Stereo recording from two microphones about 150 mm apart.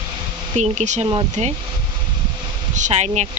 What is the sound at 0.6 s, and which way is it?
Speech, 50° right (ahead or behind).